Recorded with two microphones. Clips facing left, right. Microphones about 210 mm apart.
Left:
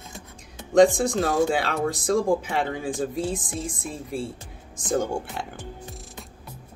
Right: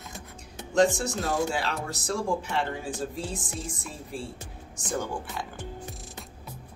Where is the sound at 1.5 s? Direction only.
75° left (ahead or behind).